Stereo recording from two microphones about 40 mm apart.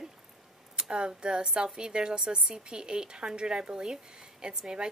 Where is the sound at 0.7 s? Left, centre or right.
Right.